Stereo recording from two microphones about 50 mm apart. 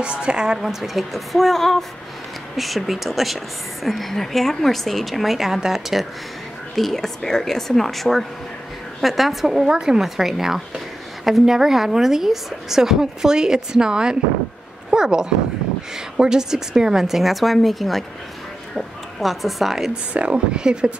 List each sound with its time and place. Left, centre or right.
0.0 s speech: right
0.6 s a woman's voice: centre
6.7 s a woman's voice: centre
20.1 s speech: right